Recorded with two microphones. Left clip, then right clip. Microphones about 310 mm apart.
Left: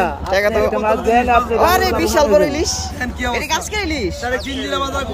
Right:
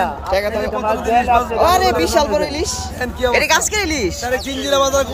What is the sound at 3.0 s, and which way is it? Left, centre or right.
Speech, right.